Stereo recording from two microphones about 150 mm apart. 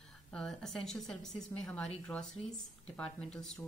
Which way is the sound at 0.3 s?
5° left (ahead or behind).